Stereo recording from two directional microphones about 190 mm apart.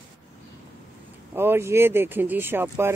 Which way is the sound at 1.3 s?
10° right (ahead or behind).